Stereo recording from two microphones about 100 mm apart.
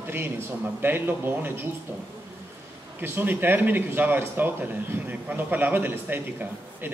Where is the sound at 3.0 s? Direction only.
20° right (ahead or behind).